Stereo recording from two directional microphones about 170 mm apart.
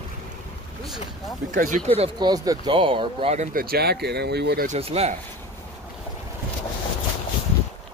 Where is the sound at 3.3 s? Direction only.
60° right (ahead or behind); by 4.6 s 75° right (ahead or behind).